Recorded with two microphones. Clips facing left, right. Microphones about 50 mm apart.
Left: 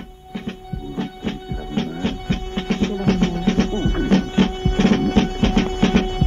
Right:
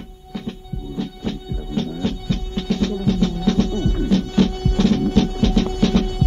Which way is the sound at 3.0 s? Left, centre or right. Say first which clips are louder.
Left 1 dB; left.